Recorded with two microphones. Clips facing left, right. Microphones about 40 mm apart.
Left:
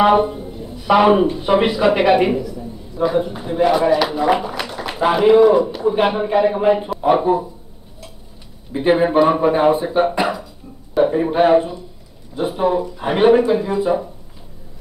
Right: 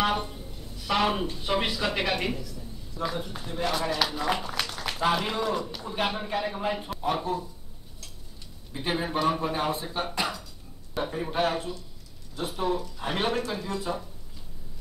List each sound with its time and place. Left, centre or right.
0.0 s speech: left
8.7 s speech: left